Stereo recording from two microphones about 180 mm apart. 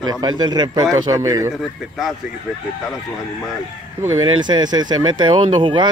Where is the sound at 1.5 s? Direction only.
Centre (ahead or behind).